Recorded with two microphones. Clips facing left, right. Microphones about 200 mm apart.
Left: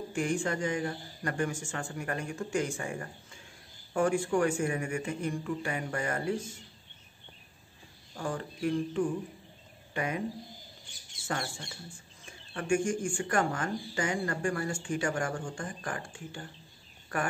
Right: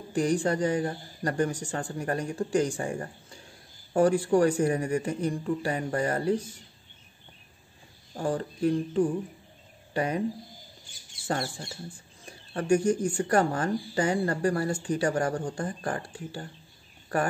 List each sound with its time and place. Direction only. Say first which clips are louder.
0.1 s speech: right 6 dB; 35° right (ahead or behind)
8.1 s speech: right 6 dB; 35° right (ahead or behind)
11.2 s speech: right 5 dB; 35° right (ahead or behind)